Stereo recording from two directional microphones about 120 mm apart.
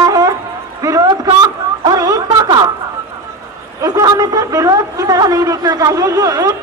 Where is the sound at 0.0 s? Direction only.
30° right (ahead or behind).